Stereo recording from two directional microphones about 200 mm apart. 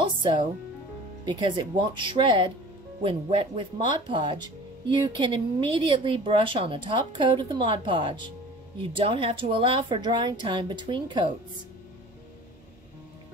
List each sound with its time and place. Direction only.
0.0 s music: 25° right (ahead or behind)
1.2 s a woman's voice: 25° right (ahead or behind)